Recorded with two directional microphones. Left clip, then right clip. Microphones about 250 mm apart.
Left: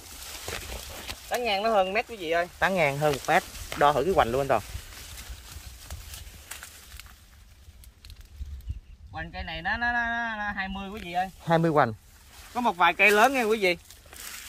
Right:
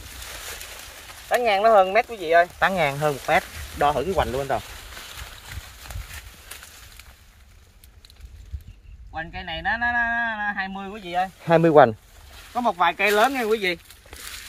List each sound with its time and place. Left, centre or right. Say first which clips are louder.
1.4 s speech: right 8 dB; centre
2.6 s speech: right 3 dB; centre
9.1 s speech: right 5 dB; centre
12.5 s speech: right 1 dB; centre